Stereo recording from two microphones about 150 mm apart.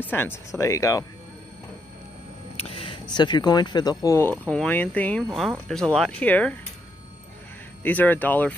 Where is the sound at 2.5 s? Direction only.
40° left (ahead or behind); by 6.6 s 10° left (ahead or behind).